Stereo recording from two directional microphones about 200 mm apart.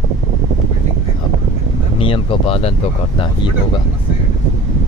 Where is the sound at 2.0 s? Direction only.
25° left (ahead or behind).